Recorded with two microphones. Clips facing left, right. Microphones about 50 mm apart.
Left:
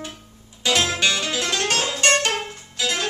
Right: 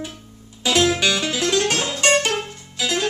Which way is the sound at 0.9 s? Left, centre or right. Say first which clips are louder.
Right 1 dB; centre.